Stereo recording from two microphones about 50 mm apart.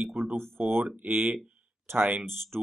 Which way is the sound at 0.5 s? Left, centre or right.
Right.